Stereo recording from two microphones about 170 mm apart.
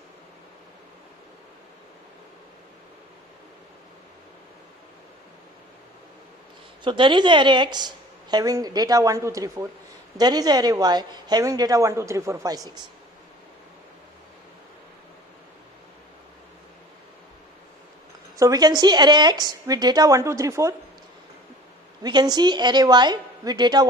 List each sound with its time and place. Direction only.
6.8 s a woman's voice: 30° right (ahead or behind)
18.4 s a woman's voice: 25° right (ahead or behind)
22.0 s a woman's voice: 25° right (ahead or behind)